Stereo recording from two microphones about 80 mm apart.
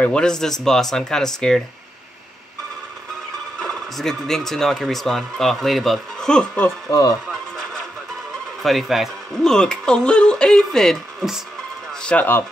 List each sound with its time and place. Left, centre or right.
0.0 s speech: centre
3.5 s speech: centre
6.9 s speech: left
8.6 s speech: centre
9.5 s speech: centre
12.0 s speech: centre